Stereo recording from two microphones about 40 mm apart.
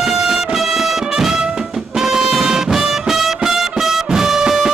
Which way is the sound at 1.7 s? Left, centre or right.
Centre.